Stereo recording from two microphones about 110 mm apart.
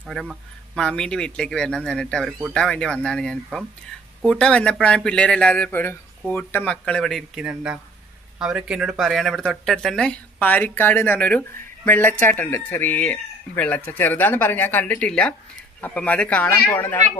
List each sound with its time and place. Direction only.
0.1 s speech: centre (ahead or behind); by 6.8 s 15° left (ahead or behind)
6.9 s speech: 5° left (ahead or behind)
7.3 s speech: 10° right (ahead or behind); by 17.0 s 15° left (ahead or behind)